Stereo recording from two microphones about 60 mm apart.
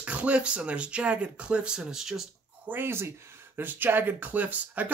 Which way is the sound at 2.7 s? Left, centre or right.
Right.